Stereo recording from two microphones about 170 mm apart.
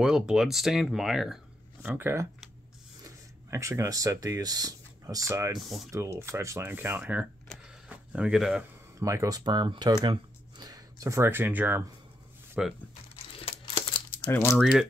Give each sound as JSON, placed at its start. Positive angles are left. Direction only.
{"t": 0.0, "sound": "speech", "side_deg": -5}
{"t": 7.4, "sound": "a sound", "side_deg": -5}
{"t": 9.0, "sound": "speech", "side_deg": -20}
{"t": 14.2, "sound": "speech", "side_deg": 15}
{"t": 14.6, "sound": "speech", "side_deg": 0}